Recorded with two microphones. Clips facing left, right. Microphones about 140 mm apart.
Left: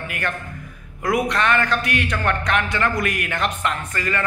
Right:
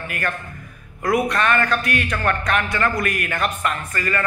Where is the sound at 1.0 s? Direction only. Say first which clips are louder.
Right 1 dB; 15° left (ahead or behind).